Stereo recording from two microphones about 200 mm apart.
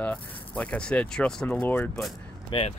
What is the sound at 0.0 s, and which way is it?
Speech, 5° left (ahead or behind).